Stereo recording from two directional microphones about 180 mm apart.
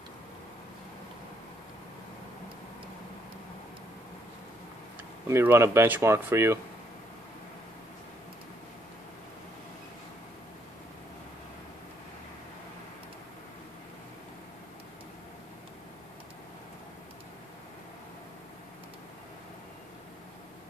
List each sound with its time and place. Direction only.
5.3 s speech: 15° right (ahead or behind)